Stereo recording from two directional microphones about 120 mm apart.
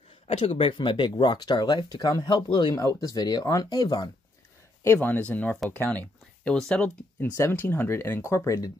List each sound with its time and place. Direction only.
0.3 s speech: 50° left (ahead or behind)
2.7 s speech: 25° left (ahead or behind)
4.8 s speech: 15° left (ahead or behind)
7.3 s speech: 20° left (ahead or behind)